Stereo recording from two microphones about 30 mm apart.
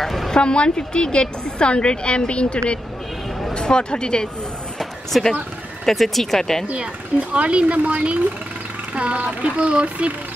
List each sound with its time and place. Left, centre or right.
0.0 s speech: centre
0.3 s a woman's voice: left
5.1 s speech: centre
5.9 s speech: centre
6.7 s speech: right
7.3 s speech: right